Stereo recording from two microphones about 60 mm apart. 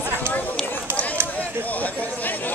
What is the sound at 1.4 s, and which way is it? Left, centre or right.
Chatter, left.